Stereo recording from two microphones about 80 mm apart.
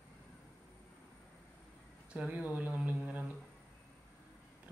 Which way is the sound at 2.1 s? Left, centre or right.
Centre.